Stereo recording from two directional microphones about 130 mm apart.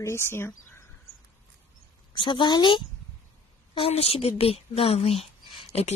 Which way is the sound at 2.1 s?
40° left (ahead or behind).